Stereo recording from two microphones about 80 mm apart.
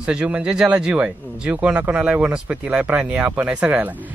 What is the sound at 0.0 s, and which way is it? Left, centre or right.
Speech, centre.